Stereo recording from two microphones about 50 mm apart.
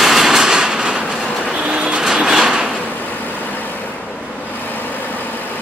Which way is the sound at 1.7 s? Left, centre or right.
Right.